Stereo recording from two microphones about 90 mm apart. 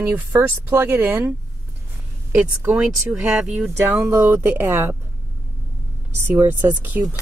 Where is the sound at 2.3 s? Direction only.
15° right (ahead or behind).